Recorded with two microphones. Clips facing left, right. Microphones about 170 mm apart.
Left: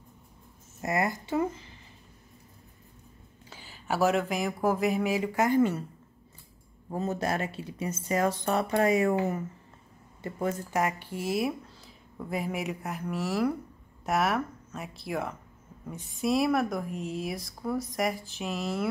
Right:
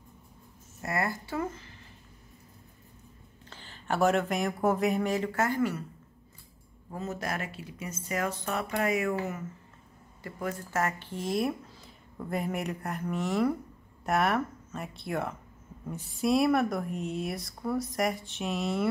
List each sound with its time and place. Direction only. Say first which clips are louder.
0.7 s speech: left 3 dB; 20° left (ahead or behind)
3.4 s speech: even; 10° left (ahead or behind); by 5.9 s 25° left (ahead or behind)
6.9 s speech: left 5 dB; 30° left (ahead or behind); by 18.9 s centre (ahead or behind)